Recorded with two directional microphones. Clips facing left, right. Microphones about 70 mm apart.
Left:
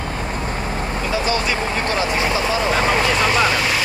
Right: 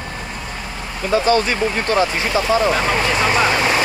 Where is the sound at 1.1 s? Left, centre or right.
Right.